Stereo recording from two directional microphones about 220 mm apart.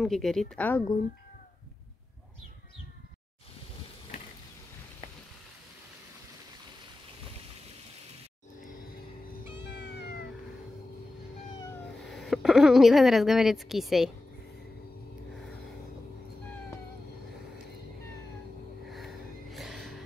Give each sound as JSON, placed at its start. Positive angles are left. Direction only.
{"t": 0.0, "sound": "a woman's voice", "side_deg": 0}
{"t": 9.7, "sound": "cat", "side_deg": 50}
{"t": 12.0, "sound": "speech", "side_deg": 0}
{"t": 18.9, "sound": "gasp", "side_deg": 0}